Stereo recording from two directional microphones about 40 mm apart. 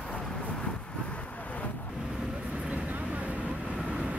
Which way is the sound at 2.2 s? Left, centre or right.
Centre.